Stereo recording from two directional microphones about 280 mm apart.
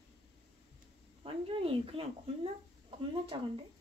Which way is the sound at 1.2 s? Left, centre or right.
Centre.